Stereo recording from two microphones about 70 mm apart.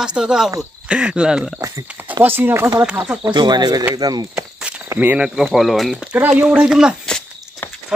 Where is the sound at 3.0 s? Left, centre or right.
Right.